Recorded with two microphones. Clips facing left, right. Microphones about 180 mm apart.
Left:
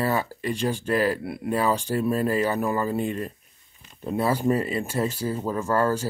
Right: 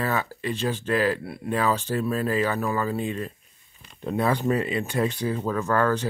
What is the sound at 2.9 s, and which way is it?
Speech, 50° left (ahead or behind).